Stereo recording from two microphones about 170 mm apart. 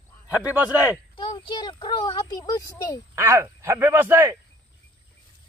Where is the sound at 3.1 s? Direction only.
15° right (ahead or behind).